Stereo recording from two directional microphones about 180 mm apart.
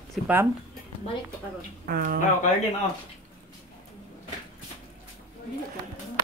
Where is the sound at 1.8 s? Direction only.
55° right (ahead or behind).